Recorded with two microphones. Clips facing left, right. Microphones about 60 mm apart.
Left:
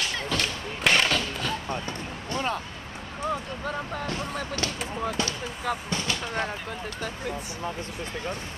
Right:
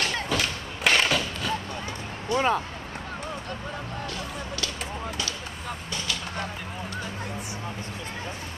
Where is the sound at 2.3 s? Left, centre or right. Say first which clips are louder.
Right 6 dB; left.